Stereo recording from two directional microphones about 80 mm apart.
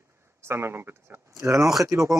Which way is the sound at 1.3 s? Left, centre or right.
Right.